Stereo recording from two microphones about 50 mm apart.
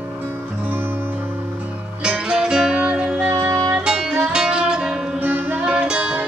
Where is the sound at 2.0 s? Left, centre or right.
Centre.